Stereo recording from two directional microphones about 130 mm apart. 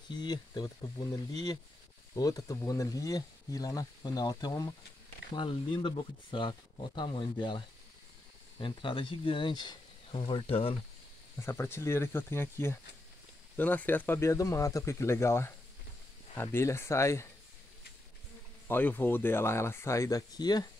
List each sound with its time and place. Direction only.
0.1 s speech: 35° left (ahead or behind)
11.4 s speech: 20° left (ahead or behind)
18.7 s speech: 15° left (ahead or behind); by 20.6 s 30° left (ahead or behind)